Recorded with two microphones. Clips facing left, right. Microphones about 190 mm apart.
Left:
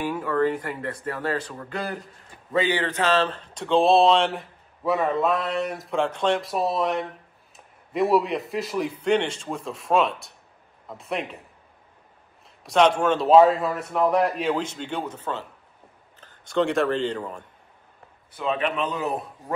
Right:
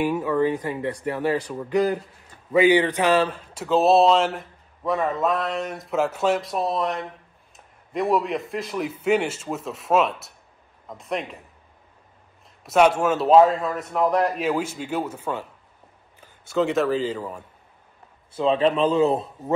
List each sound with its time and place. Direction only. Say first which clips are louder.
0.1 s a man's voice: right 2 dB; 10° right (ahead or behind)
12.6 s a man's voice: right 1 dB; 5° right (ahead or behind)
18.3 s a man's voice: right 6 dB; 30° right (ahead or behind)